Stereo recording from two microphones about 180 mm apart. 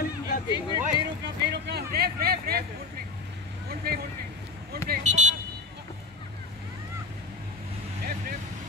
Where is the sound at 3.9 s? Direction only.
60° right (ahead or behind).